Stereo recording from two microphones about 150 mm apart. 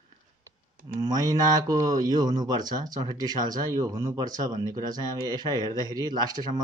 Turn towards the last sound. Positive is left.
turn(degrees=-25)  # may be behind; listen again after turning